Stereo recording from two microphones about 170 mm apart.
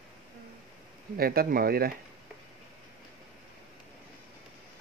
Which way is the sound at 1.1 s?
60° right (ahead or behind).